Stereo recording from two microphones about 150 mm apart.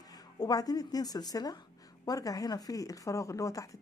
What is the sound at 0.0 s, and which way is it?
A woman's voice, 25° left (ahead or behind).